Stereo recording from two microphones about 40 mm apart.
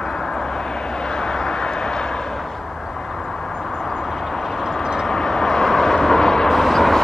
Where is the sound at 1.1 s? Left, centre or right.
Centre.